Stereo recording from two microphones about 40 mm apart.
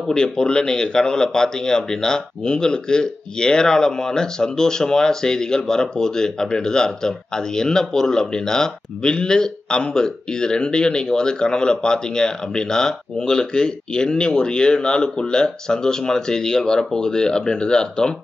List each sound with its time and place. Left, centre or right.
0.1 s speech: left